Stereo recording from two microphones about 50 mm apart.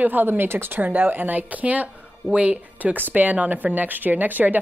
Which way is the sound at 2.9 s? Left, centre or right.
Right.